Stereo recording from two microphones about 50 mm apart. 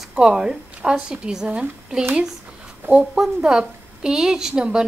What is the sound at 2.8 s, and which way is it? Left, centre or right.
Speech, right.